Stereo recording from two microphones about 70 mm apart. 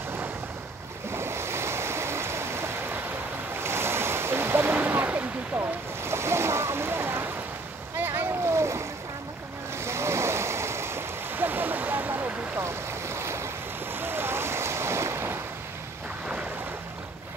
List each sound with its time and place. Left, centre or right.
1.1 s stream: right
3.6 s waves: right
8.0 s splash: right
9.8 s stream: right
13.9 s waves: right